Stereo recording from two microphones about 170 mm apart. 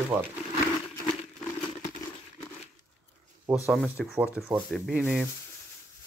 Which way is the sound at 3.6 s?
Centre (ahead or behind).